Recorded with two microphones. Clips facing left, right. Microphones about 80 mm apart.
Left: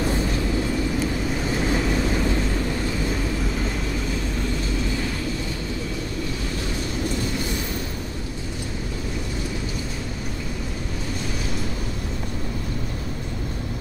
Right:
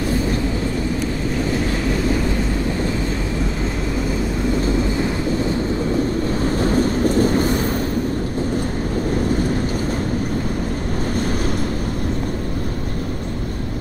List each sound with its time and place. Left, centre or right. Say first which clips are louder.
6.4 s vehicle: right 11 dB; right